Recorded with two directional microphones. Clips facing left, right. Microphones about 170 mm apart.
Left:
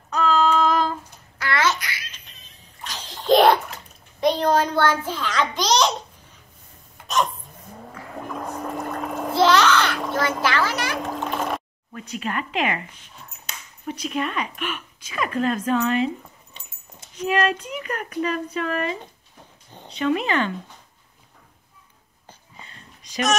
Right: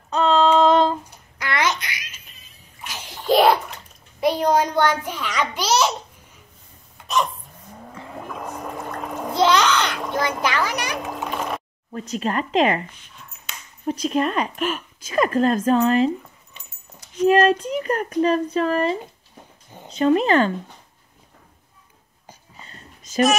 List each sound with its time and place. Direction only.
0.1 s child singing: 30° right (ahead or behind)
1.4 s babbling: 15° right (ahead or behind)
2.6 s a sound: 10° right (ahead or behind)
3.3 s bathtub: centre (ahead or behind)
8.3 s a sound: centre (ahead or behind)
8.6 s pour: centre (ahead or behind)
9.3 s a sound: 15° right (ahead or behind)
10.4 s children playing: 15° right (ahead or behind)
11.0 s splash: 5° right (ahead or behind)
12.1 s speech: 35° right (ahead or behind)
13.5 s finger snapping: 40° left (ahead or behind)
13.8 s speech: 35° right (ahead or behind)
17.3 s speech: 40° right (ahead or behind)
22.6 s a sound: 35° right (ahead or behind)